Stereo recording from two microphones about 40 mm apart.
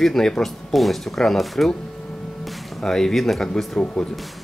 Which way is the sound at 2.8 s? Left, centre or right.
Centre.